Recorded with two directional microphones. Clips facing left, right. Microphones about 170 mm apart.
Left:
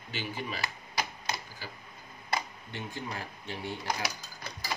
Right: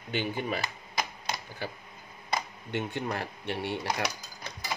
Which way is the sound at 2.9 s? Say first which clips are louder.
Right 6 dB; 70° right (ahead or behind).